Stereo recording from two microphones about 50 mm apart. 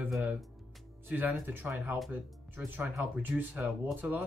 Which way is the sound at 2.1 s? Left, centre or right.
Right.